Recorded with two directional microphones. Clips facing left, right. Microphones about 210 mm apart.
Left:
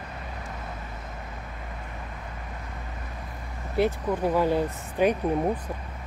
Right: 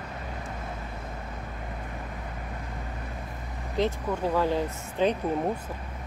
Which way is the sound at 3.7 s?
10° left (ahead or behind).